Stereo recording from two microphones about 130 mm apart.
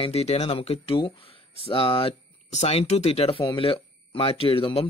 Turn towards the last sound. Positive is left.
turn(degrees=45)  # may be behind; listen again after turning